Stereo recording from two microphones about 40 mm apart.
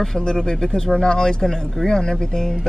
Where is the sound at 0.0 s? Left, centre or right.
Centre.